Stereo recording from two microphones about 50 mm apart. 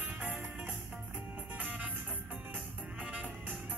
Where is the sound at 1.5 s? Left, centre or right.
Right.